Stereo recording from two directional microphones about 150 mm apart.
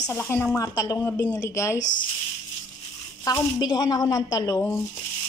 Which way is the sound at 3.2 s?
25° left (ahead or behind).